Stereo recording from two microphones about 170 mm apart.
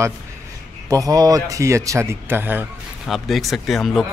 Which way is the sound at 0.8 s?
20° right (ahead or behind).